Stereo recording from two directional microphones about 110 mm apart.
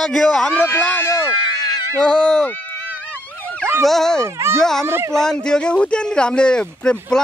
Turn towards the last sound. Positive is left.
turn(degrees=10)  # may be behind; listen again after turning